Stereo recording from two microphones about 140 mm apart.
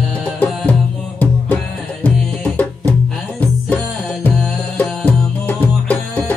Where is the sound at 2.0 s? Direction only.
10° left (ahead or behind).